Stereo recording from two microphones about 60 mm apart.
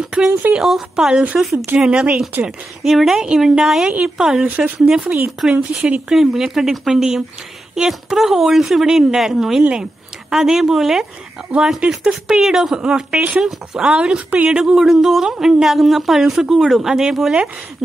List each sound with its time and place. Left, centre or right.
0.0 s a sound: centre
0.6 s speech: centre
1.8 s speech: centre
2.8 s speech: centre
6.1 s speech: centre
9.6 s speech: centre
10.3 s speech: centre
14.6 s speech: centre